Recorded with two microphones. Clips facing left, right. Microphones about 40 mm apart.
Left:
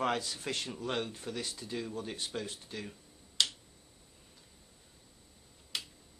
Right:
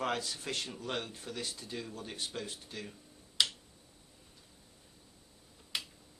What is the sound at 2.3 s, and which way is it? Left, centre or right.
Speech, centre.